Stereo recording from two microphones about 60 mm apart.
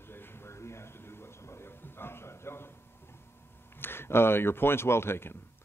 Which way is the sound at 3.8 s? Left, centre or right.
Left.